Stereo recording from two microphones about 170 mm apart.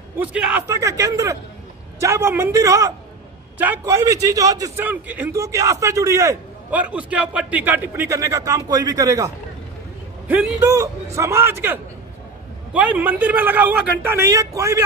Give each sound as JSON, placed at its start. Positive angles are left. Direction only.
{"t": 0.2, "sound": "a man's voice", "side_deg": -10}